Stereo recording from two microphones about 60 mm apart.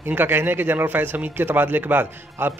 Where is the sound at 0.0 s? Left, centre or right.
Right.